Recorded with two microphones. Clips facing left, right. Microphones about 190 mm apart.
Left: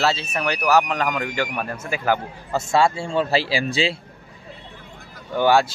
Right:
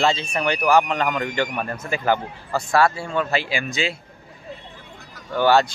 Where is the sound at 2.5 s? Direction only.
25° left (ahead or behind).